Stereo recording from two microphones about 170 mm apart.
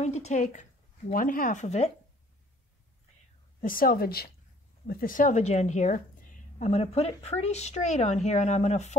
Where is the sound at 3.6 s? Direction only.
55° left (ahead or behind).